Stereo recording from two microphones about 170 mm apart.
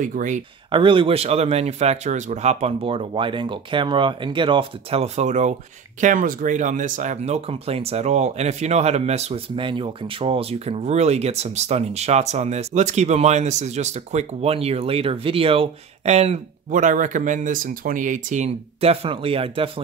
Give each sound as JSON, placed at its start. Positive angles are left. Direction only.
{"t": 0.0, "sound": "speech", "side_deg": -50}
{"t": 0.7, "sound": "speech", "side_deg": -30}